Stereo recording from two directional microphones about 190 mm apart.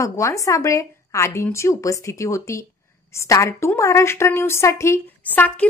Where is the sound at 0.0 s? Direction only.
15° left (ahead or behind).